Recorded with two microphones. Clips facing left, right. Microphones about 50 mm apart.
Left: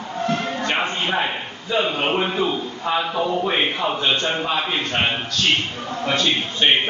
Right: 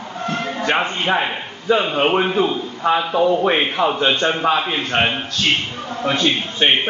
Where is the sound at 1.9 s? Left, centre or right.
Right.